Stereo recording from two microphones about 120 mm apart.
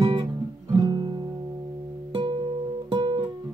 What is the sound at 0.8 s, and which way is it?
Music, 35° right (ahead or behind).